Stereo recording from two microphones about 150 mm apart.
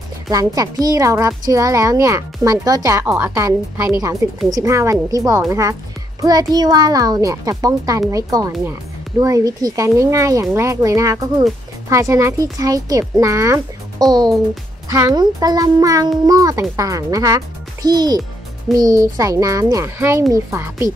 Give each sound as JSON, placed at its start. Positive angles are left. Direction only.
{"t": 0.3, "sound": "speech", "side_deg": -25}